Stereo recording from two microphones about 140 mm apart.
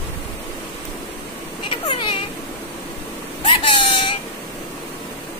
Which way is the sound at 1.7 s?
35° left (ahead or behind).